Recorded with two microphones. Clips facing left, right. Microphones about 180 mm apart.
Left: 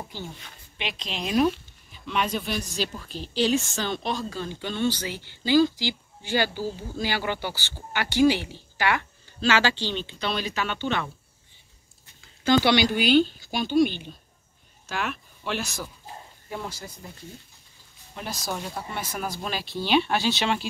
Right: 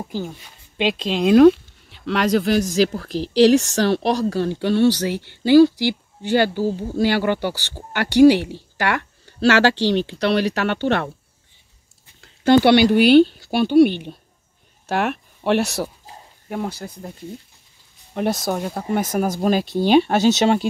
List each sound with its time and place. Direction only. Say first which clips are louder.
1.2 s speech: right 12 dB; 75° right (ahead or behind)
12.2 s speech: right 7 dB; 60° right (ahead or behind)
18.4 s speech: right 8 dB; 50° right (ahead or behind)